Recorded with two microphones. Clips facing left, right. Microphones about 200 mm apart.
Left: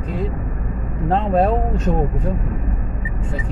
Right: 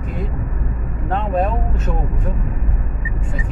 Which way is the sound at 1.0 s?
35° left (ahead or behind).